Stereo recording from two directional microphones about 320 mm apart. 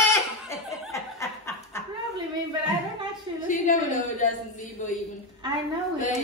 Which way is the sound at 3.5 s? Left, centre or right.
Left.